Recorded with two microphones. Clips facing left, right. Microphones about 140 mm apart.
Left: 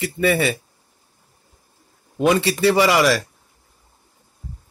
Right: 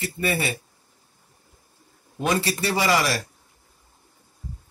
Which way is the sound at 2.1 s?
90° left.